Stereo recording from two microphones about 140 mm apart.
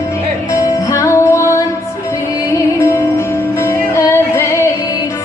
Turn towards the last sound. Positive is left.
turn(degrees=20)  # may be behind; listen again after turning